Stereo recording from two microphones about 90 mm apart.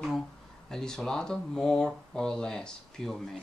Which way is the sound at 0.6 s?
5° left (ahead or behind).